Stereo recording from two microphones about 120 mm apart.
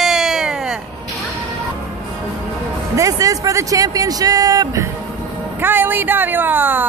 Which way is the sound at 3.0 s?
30° right (ahead or behind).